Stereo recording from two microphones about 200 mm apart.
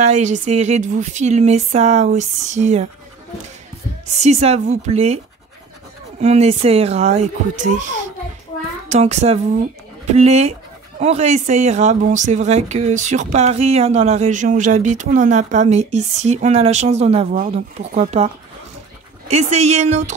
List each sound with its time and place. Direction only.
0.0 s speech: 35° right (ahead or behind)
4.1 s speech: 35° right (ahead or behind)
6.2 s a child's voice: 30° right (ahead or behind)